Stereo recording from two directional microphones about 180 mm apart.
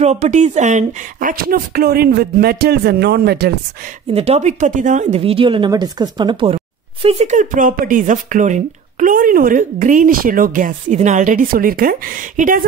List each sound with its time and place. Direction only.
0.0 s speech: 40° right (ahead or behind); by 3.5 s 65° right (ahead or behind)
4.1 s speech: 35° right (ahead or behind)